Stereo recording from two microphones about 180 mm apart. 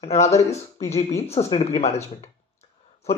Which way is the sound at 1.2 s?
35° left (ahead or behind).